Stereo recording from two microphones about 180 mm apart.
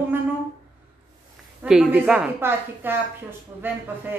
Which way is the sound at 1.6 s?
5° right (ahead or behind).